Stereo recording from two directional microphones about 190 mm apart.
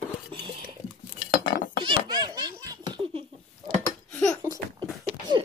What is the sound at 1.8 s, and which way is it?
Laughter, 20° right (ahead or behind).